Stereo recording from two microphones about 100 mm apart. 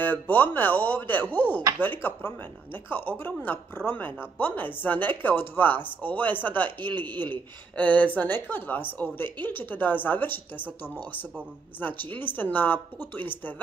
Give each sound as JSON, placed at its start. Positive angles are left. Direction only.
{"t": 0.0, "sound": "speech", "side_deg": 20}
{"t": 11.8, "sound": "speech", "side_deg": 20}